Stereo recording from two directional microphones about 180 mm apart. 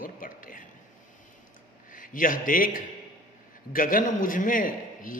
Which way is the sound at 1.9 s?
50° left (ahead or behind).